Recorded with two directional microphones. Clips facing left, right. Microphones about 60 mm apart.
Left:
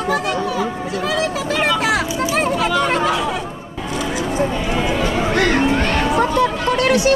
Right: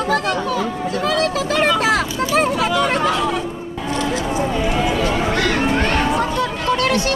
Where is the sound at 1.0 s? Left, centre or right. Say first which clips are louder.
Right 1 dB; centre.